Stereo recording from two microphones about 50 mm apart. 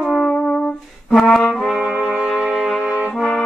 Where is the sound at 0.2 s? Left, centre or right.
Left.